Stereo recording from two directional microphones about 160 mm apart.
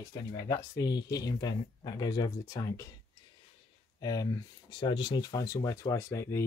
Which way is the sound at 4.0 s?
25° left (ahead or behind).